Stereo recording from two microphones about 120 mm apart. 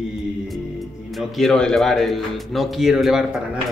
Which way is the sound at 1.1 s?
Centre (ahead or behind).